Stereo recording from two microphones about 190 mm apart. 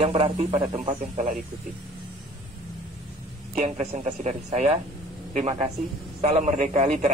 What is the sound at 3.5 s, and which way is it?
Speech, 35° right (ahead or behind).